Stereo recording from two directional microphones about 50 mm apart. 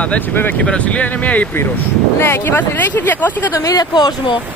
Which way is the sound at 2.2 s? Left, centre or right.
Left.